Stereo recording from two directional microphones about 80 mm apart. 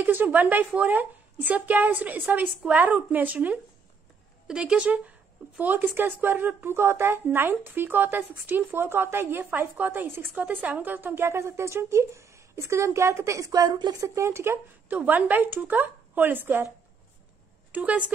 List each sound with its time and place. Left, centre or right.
0.0 s a woman's voice: right
14.0 s speech: right
14.9 s a woman's voice: right
17.7 s a woman's voice: centre